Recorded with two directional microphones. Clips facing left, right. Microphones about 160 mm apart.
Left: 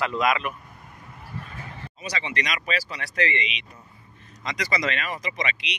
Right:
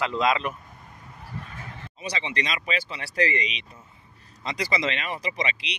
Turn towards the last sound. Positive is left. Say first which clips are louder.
# even
turn(degrees=-30)  # may be behind; listen again after turning